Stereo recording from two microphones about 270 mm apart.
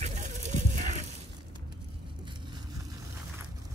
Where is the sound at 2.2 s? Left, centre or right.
Centre.